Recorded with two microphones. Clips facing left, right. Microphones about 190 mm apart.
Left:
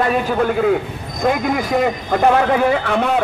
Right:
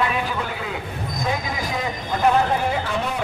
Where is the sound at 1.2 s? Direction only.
65° left (ahead or behind).